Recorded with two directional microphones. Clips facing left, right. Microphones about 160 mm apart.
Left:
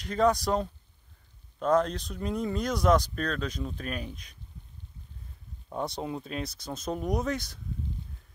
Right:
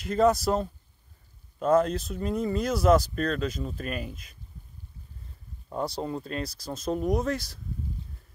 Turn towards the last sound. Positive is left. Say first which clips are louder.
# right 2 dB
turn(degrees=0)  # may be behind; listen again after turning